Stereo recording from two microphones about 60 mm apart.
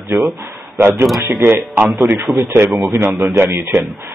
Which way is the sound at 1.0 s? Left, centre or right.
Centre.